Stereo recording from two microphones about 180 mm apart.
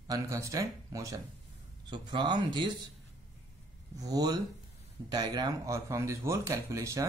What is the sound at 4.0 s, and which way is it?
Speech, 20° right (ahead or behind).